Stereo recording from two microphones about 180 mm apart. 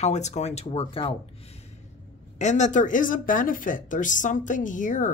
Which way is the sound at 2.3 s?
40° left (ahead or behind).